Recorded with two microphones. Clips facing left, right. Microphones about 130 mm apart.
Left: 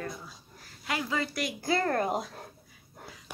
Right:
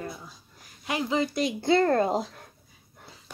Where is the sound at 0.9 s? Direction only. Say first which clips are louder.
Right 5 dB; 20° right (ahead or behind).